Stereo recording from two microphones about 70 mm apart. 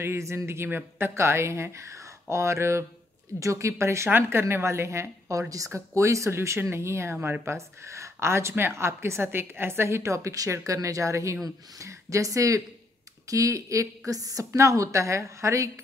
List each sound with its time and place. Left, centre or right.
0.0 s a woman's voice: right